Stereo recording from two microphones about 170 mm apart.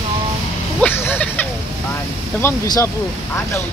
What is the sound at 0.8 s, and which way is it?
A man's voice, 15° left (ahead or behind).